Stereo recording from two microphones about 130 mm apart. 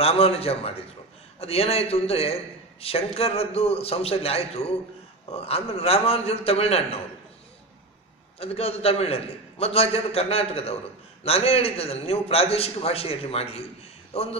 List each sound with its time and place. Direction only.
0.0 s a man's voice: 50° left (ahead or behind)
8.4 s a man's voice: 50° left (ahead or behind)